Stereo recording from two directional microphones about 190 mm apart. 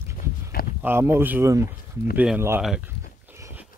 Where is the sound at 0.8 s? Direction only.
10° right (ahead or behind).